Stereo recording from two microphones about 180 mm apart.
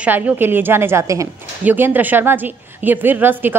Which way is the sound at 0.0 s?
10° right (ahead or behind).